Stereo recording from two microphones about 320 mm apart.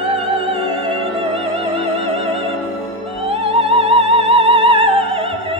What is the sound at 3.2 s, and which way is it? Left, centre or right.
Music, centre.